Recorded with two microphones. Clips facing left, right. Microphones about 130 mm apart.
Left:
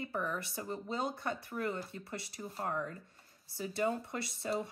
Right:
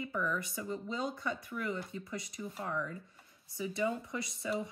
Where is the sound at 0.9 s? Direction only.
55° left (ahead or behind).